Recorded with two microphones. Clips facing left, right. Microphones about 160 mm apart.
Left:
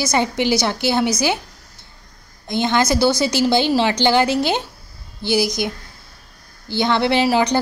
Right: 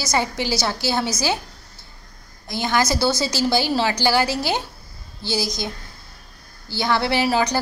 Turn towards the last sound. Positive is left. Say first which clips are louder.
# left 3 dB
turn(degrees=20)  # may be behind; listen again after turning